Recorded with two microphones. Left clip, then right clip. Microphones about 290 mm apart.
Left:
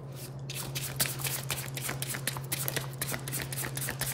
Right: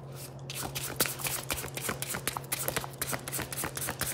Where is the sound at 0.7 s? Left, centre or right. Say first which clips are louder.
Right 1 dB; centre.